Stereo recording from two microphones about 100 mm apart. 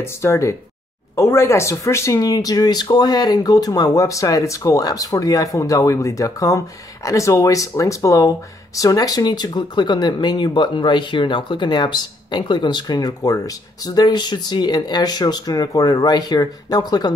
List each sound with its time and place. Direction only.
0.0 s speech: 25° left (ahead or behind)